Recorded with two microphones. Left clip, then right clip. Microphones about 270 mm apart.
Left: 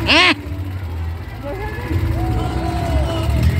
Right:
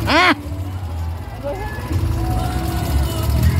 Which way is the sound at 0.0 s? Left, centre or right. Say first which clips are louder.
Left 1 dB; right.